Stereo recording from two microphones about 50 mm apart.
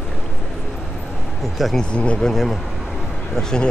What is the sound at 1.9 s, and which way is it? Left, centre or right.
Speech, left.